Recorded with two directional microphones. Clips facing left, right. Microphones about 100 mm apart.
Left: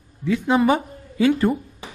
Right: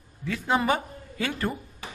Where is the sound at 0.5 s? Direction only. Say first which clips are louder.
Left 6 dB; centre (ahead or behind).